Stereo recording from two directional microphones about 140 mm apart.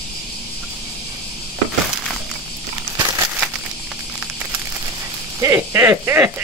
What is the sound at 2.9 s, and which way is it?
Crumpling, 25° right (ahead or behind).